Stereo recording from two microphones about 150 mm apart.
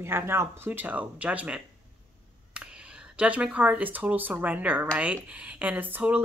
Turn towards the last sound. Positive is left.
turn(degrees=-10)  # may be behind; listen again after turning